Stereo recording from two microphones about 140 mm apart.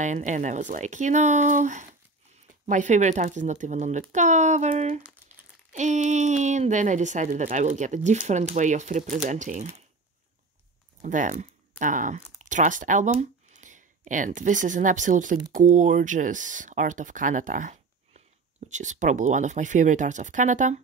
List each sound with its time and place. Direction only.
0.0 s speech: 60° right (ahead or behind)
11.0 s speech: 60° right (ahead or behind)